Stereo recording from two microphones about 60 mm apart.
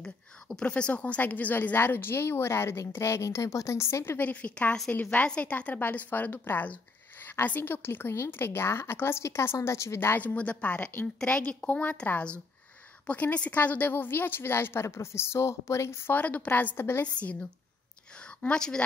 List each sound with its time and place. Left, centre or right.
0.0 s a woman's voice: centre; by 4.2 s left
4.2 s a woman's voice: left
10.1 s a woman's voice: left
16.1 s a woman's voice: left
17.0 s a woman's voice: left